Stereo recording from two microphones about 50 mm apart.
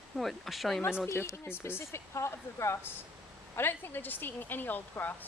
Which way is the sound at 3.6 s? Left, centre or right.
Left.